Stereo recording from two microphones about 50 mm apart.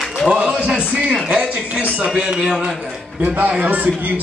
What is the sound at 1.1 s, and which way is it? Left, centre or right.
Music, centre.